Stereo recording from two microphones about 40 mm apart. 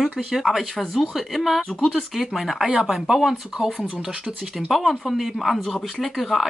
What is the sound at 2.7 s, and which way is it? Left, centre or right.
Speech, centre.